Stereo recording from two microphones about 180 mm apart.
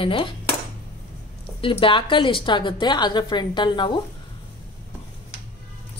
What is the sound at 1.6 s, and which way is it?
A woman's voice, 30° left (ahead or behind).